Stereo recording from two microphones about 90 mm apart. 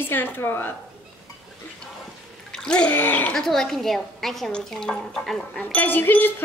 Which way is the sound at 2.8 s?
20° left (ahead or behind).